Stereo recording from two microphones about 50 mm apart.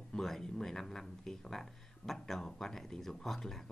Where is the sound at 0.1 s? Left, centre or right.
Centre.